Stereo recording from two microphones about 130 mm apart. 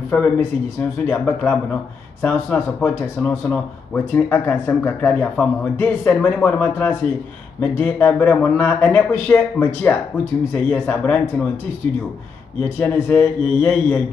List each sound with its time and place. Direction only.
0.1 s speech: 15° left (ahead or behind)
12.6 s speech: 15° left (ahead or behind)